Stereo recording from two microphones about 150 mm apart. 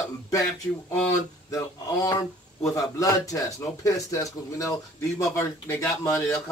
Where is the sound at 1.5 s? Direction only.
20° left (ahead or behind).